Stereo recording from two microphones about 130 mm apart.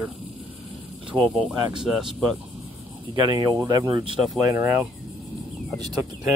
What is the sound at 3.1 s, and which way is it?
Speech, 35° right (ahead or behind).